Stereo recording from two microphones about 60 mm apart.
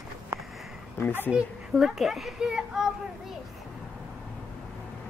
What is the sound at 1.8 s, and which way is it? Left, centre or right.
A child's voice, centre.